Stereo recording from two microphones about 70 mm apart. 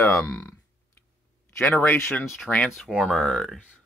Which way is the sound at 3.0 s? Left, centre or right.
Centre.